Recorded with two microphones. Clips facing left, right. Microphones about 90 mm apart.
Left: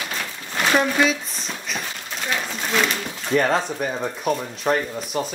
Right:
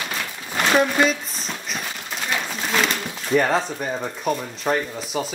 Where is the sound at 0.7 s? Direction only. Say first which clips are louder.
Right 1 dB; centre (ahead or behind).